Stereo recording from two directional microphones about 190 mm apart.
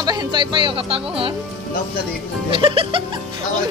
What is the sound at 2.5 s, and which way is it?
Speech, 25° right (ahead or behind).